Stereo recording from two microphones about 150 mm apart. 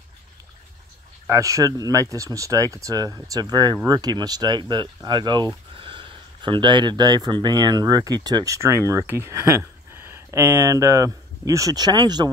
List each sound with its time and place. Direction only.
1.2 s speech: 20° right (ahead or behind)